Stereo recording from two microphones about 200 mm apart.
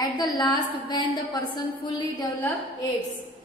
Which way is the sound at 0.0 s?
20° left (ahead or behind).